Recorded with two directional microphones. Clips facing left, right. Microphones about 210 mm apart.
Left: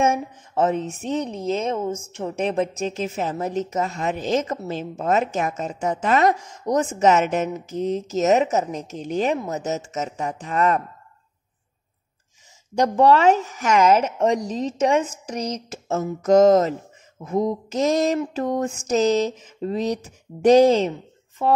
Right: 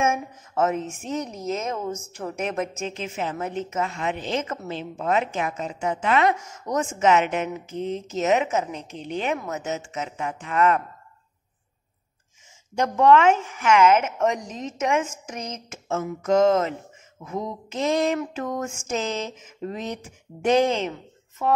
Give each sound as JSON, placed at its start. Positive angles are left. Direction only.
{"t": 0.0, "sound": "speech", "side_deg": 30}
{"t": 12.7, "sound": "speech", "side_deg": 35}
{"t": 20.9, "sound": "a sound", "side_deg": 30}